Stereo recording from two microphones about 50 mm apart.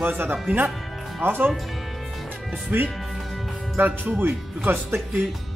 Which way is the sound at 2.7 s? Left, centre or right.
Right.